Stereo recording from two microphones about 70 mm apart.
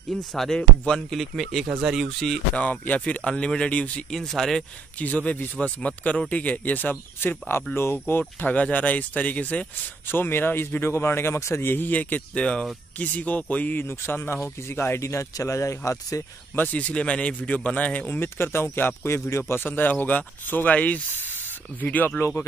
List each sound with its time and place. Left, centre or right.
0.1 s speech: centre
2.0 s speech: centre
2.5 s speech: left
4.1 s speech: centre
4.9 s speech: left
10.0 s speech: left
11.6 s speech: left
15.0 s speech: left
16.5 s speech: left
19.5 s speech: left